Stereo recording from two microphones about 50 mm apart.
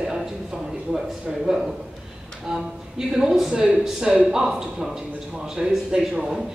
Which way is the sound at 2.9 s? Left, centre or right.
Centre.